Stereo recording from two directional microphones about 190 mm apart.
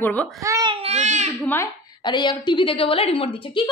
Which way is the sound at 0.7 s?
30° right (ahead or behind).